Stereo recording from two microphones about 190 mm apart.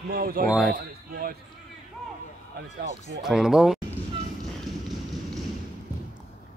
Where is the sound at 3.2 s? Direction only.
Centre (ahead or behind).